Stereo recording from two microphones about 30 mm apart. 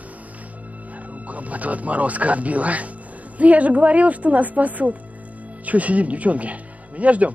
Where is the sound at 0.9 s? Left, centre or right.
Right.